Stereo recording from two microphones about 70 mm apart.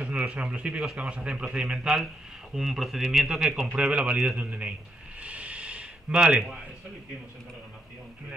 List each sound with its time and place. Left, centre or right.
0.2 s a man's voice: centre
5.2 s a sound: centre
6.2 s a man's voice: centre